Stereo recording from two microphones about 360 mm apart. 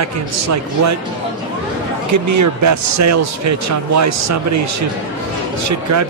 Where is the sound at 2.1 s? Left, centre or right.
Right.